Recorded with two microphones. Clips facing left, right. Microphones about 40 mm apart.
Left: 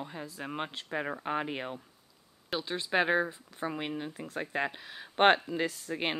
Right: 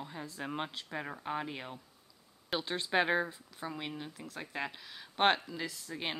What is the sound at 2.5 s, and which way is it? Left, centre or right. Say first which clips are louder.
Speech: left 2 dB; centre.